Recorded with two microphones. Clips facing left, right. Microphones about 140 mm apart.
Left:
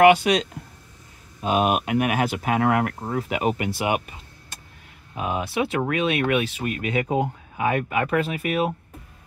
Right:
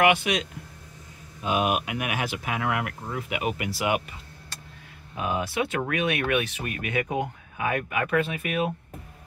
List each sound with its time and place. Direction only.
0.0 s speech: 35° left (ahead or behind)
3.7 s a sound: 25° left (ahead or behind)
5.1 s speech: 25° left (ahead or behind)